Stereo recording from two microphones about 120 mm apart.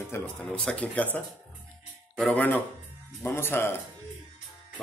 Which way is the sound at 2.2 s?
10° left (ahead or behind).